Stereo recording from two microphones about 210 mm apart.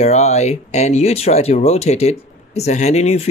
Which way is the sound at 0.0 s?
30° left (ahead or behind).